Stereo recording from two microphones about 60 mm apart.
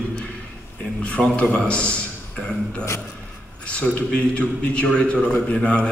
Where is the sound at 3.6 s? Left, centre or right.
Left.